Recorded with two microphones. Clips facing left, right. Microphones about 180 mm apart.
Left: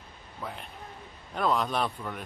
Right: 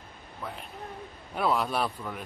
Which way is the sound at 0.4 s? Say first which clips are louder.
Right 1 dB; centre (ahead or behind).